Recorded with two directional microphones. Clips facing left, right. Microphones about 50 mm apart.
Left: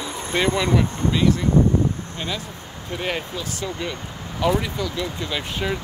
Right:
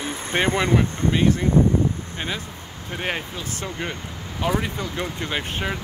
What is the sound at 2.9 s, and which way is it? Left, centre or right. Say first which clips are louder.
Speech: left 1 dB; right.